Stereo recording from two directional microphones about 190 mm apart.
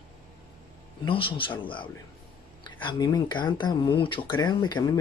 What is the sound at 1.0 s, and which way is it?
Speech, 25° left (ahead or behind).